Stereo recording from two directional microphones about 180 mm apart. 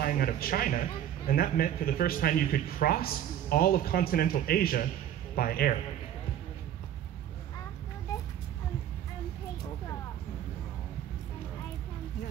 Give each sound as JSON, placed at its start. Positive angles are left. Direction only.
{"t": 0.0, "sound": "a man's voice", "side_deg": 55}